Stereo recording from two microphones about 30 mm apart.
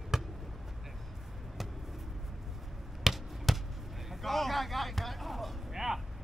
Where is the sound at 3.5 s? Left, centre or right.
Centre.